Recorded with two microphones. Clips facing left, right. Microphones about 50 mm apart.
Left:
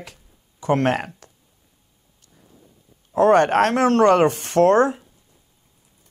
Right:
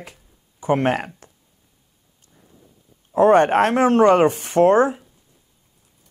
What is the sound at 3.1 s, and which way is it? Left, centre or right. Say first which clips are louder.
Speech: right 1 dB; centre.